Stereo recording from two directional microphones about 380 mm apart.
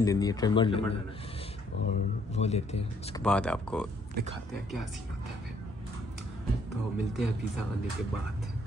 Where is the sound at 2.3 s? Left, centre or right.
Centre.